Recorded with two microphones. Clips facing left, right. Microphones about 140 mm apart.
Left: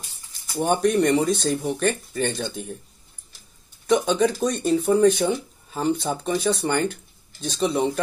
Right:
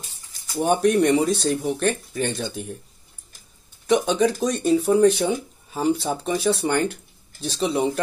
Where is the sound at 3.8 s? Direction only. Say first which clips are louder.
Even; 5° right (ahead or behind).